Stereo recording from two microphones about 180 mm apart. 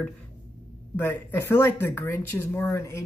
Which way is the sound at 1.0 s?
15° left (ahead or behind).